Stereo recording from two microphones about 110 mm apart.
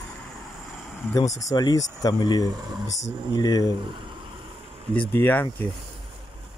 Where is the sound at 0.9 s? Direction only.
30° left (ahead or behind).